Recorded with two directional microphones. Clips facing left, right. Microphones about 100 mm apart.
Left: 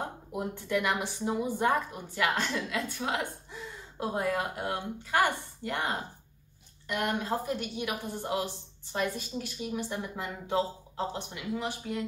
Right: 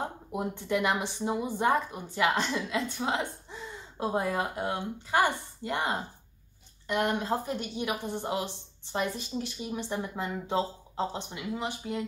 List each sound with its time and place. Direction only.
0.3 s a woman's voice: 20° right (ahead or behind)